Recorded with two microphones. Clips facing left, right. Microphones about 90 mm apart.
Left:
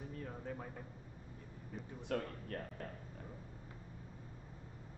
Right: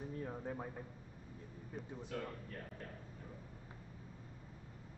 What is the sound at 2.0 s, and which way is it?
Speech, 60° left (ahead or behind).